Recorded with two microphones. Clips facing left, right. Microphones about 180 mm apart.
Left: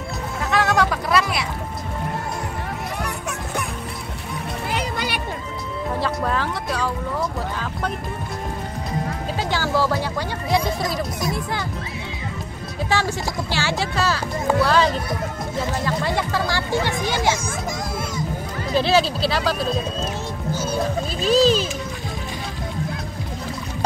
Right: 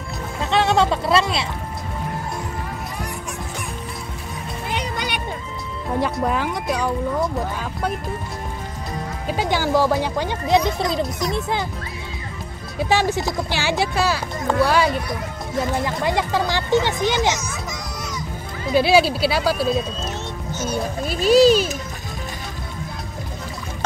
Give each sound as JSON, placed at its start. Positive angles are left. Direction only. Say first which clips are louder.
{"t": 0.5, "sound": "music", "louder": "right 2 dB", "side_deg": -25}
{"t": 3.0, "sound": "music", "louder": "left 2 dB", "side_deg": 65}
{"t": 4.6, "sound": "music", "louder": "even", "side_deg": 5}
{"t": 6.2, "sound": "speech", "louder": "right 2 dB", "side_deg": -15}
{"t": 9.3, "sound": "speech", "louder": "right 4 dB", "side_deg": -15}
{"t": 12.9, "sound": "speech", "louder": "right 4 dB", "side_deg": -15}
{"t": 18.8, "sound": "speech", "louder": "right 3 dB", "side_deg": -10}
{"t": 21.2, "sound": "speech", "louder": "right 4 dB", "side_deg": -10}